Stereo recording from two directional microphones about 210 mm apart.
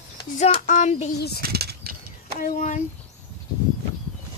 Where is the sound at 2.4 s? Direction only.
40° left (ahead or behind).